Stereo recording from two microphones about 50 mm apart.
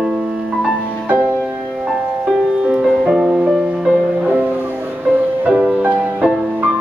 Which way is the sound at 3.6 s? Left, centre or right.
Right.